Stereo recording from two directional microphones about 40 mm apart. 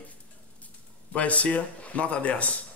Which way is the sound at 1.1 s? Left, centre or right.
Left.